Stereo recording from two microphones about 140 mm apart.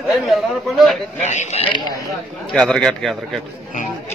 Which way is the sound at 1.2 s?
55° left (ahead or behind).